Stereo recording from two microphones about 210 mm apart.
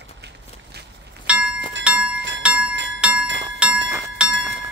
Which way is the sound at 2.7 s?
60° right (ahead or behind).